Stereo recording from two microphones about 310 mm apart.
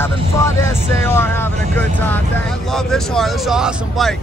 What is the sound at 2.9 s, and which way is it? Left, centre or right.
Speech, centre.